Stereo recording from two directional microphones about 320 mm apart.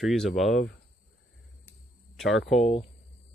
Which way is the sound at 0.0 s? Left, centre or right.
Centre.